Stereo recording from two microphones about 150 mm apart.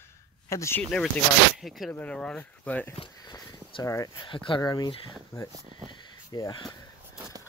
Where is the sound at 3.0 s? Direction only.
30° left (ahead or behind).